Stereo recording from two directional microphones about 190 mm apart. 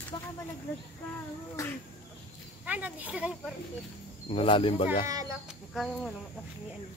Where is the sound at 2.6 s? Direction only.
10° right (ahead or behind).